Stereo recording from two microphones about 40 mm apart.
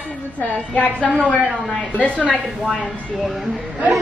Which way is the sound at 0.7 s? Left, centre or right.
Left.